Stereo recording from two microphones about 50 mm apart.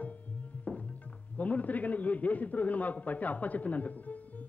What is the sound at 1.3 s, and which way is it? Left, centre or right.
A man's voice, left.